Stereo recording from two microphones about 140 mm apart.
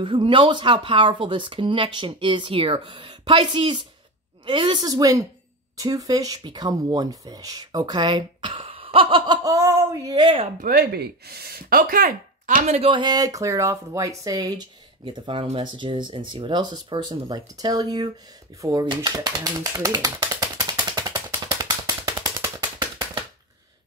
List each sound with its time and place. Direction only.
0.0 s speech: 35° right (ahead or behind)
10.6 s speech: 90° right; by 12.6 s 75° right (ahead or behind)
12.6 s speech: 45° right (ahead or behind)
21.3 s a sound: 25° right (ahead or behind)